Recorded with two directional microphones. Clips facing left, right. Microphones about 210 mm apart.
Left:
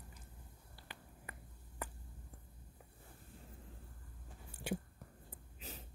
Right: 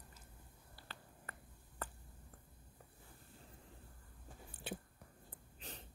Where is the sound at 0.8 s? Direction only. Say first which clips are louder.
Left 1 dB; 15° left (ahead or behind).